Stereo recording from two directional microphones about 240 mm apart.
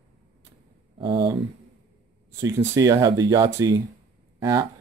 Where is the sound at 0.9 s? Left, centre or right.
Centre.